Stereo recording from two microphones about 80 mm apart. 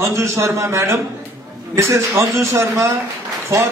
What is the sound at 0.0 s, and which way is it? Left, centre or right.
A man's voice, right.